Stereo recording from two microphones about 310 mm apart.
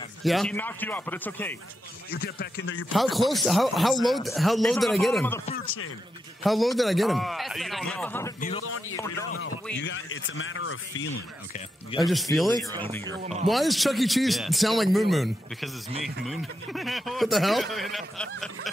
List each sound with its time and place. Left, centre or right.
0.2 s speech: centre
2.0 s speech: left
2.9 s speech: centre
6.4 s speech: centre
8.4 s a man's voice: left
9.8 s speech: left
12.0 s speech: centre
13.2 s a man's voice: right
13.5 s speech: centre